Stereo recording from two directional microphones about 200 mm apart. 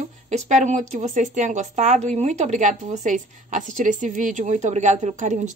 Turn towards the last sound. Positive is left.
turn(degrees=-35)  # may be behind; listen again after turning